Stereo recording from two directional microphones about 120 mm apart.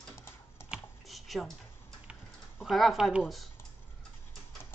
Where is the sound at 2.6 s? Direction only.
Centre (ahead or behind).